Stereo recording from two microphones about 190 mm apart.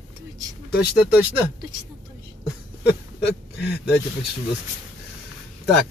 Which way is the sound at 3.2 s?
60° left (ahead or behind).